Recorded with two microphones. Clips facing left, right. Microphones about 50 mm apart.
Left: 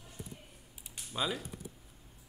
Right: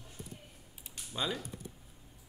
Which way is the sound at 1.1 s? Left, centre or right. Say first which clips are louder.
Left 1 dB; centre.